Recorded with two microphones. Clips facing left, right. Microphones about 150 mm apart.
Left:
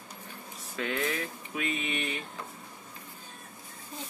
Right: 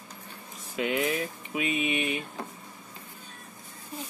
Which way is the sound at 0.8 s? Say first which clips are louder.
Right 4 dB; 15° right (ahead or behind).